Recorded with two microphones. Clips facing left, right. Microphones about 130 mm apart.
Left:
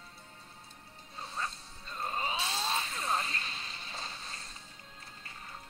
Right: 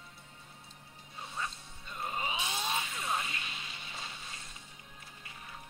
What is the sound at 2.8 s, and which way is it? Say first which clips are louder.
Vehicle: left 2 dB; 30° left (ahead or behind).